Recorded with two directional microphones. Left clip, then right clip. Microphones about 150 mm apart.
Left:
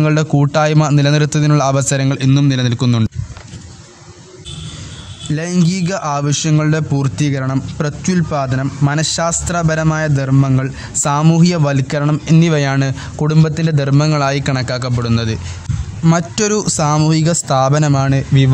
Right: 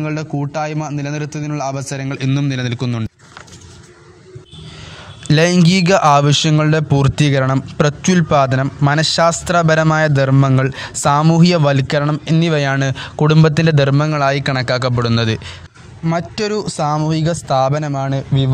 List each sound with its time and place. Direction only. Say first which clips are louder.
0.0 s a man's voice: left 7 dB; 15° left (ahead or behind)
2.1 s a man's voice: left 4 dB; 10° right (ahead or behind)
5.3 s speech: right 9 dB; 55° right (ahead or behind)
5.7 s a man's voice: right 8 dB; 45° right (ahead or behind)
6.5 s a man's voice: right 2 dB; 30° right (ahead or behind)
7.0 s a man's voice: right 4 dB; 45° right (ahead or behind); by 12.1 s 30° right (ahead or behind)
12.1 s a man's voice: left 1 dB; 20° right (ahead or behind); by 13.9 s 45° right (ahead or behind)
13.9 s a man's voice: even; 20° right (ahead or behind); by 15.4 s 35° right (ahead or behind)
16.0 s a man's voice: left 3 dB; 5° right (ahead or behind)